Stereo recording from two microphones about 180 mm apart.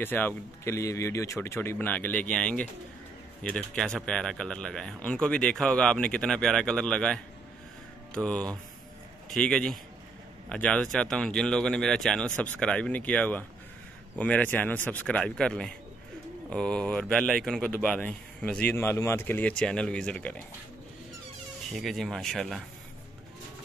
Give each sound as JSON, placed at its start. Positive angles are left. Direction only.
{"t": 0.0, "sound": "speech", "side_deg": 10}
{"t": 21.7, "sound": "speech", "side_deg": 0}